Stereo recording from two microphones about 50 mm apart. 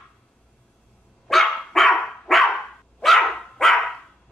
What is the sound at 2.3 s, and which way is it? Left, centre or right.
Dog, centre.